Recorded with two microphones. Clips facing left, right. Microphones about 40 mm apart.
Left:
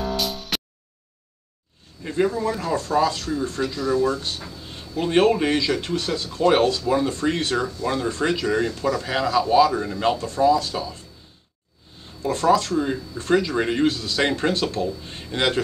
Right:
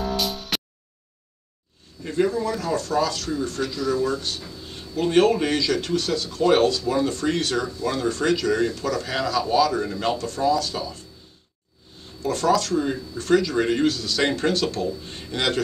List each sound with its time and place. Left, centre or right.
0.0 s music: centre
2.0 s speech: centre
3.6 s speech: centre
10.1 s speech: left
12.2 s speech: left
12.7 s speech: centre
13.2 s speech: left